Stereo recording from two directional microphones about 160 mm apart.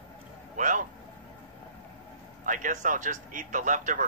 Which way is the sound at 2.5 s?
55° right (ahead or behind).